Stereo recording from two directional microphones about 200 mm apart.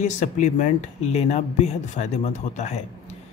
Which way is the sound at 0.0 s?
35° left (ahead or behind).